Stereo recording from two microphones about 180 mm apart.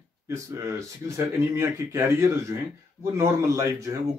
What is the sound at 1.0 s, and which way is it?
Speech, 15° right (ahead or behind).